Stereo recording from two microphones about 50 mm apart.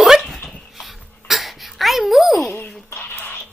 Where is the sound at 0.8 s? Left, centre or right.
Centre.